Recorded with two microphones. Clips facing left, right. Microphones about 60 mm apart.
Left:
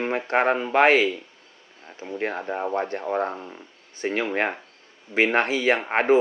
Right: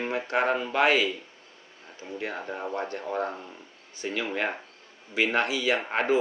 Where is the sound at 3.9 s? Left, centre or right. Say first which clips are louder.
Left 5 dB; left.